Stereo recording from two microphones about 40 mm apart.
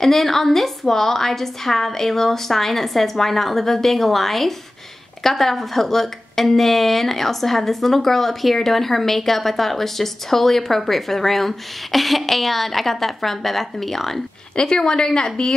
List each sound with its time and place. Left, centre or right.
0.0 s a woman's voice: centre
14.5 s a woman's voice: centre